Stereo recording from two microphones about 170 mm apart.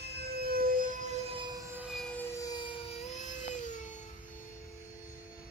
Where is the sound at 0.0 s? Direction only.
70° right (ahead or behind); by 1.8 s 20° right (ahead or behind).